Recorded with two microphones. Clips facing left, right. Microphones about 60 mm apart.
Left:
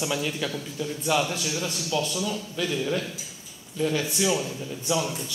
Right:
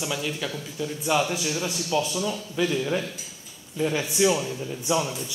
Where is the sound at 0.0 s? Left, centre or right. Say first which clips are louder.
Left 1 dB; centre.